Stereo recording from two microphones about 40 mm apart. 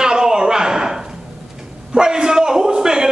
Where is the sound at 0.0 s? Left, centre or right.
Centre.